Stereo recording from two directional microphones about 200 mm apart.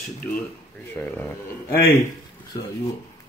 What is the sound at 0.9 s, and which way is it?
Speech, 10° left (ahead or behind).